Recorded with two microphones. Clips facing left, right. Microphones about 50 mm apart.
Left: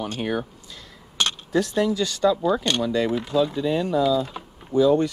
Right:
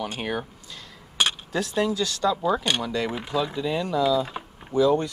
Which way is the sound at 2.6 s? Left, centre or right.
Centre.